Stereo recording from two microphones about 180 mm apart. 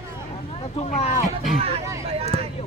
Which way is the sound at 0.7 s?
35° left (ahead or behind).